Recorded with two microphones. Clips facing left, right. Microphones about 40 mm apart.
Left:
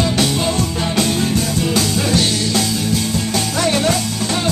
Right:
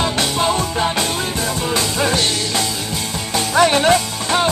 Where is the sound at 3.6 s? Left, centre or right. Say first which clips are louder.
Right 5 dB; right.